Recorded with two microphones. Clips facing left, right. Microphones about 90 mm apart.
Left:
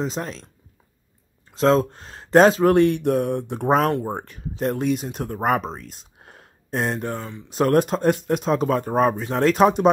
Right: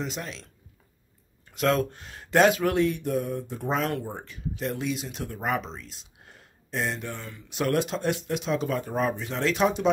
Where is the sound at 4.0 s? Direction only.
50° left (ahead or behind).